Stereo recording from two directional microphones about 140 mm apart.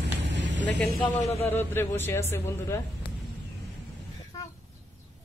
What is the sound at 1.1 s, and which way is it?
Speech, 55° left (ahead or behind).